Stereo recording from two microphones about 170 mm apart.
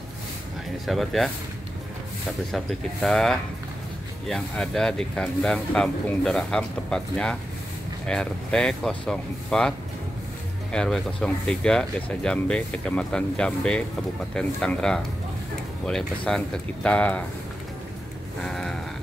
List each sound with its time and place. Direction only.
0.8 s speech: centre (ahead or behind)
2.5 s speech: centre (ahead or behind)
18.4 s speech: 5° left (ahead or behind)